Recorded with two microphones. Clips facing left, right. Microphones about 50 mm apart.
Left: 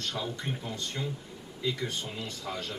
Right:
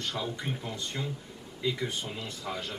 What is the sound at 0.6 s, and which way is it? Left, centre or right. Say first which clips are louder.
Speech: even; centre.